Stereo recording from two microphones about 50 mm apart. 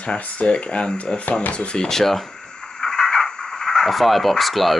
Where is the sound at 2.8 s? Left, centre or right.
Centre.